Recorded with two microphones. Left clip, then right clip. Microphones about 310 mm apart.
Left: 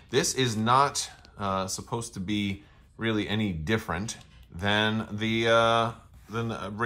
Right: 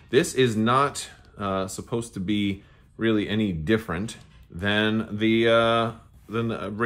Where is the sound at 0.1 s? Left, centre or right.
Centre.